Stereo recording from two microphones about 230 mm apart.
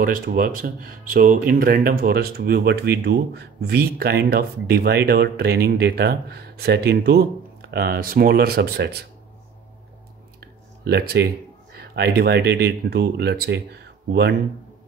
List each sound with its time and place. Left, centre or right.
0.0 s speech: right
10.4 s a sound: right
11.7 s speech: right